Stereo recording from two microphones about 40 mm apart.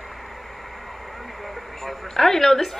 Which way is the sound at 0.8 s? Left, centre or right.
Centre.